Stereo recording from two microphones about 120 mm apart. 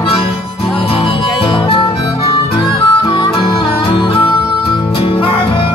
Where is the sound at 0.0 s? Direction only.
50° left (ahead or behind).